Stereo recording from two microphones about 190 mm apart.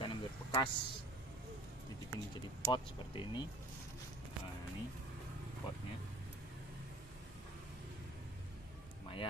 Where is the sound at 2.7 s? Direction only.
25° left (ahead or behind).